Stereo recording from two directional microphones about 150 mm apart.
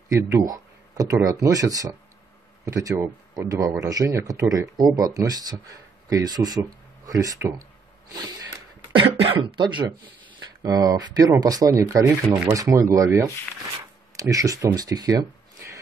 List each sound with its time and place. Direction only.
0.1 s speech: 20° right (ahead or behind)